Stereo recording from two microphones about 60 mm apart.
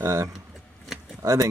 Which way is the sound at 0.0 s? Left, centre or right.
Right.